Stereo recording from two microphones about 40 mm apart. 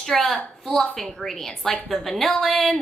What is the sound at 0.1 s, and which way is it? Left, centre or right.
A woman's voice, centre.